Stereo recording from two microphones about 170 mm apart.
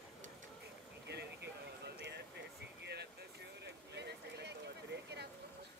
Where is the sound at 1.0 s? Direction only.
80° right.